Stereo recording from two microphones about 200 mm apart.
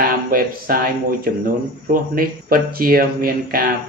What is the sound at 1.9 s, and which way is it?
Speech, 45° right (ahead or behind).